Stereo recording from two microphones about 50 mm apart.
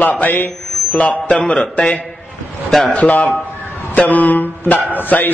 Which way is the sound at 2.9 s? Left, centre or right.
Left.